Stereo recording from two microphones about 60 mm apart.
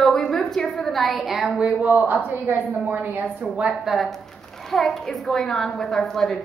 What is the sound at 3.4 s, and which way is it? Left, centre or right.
Speech, centre.